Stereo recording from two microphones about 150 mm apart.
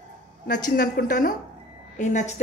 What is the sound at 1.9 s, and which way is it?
Speech, 55° left (ahead or behind).